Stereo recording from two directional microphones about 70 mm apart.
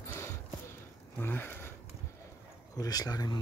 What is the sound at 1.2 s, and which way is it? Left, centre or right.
Speech, left.